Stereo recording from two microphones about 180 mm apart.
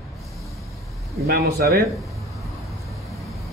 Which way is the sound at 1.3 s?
60° right (ahead or behind).